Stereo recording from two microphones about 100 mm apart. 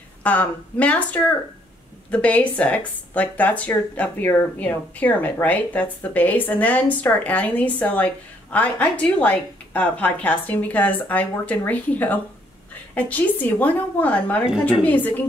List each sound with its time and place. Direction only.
0.2 s speech: 15° left (ahead or behind)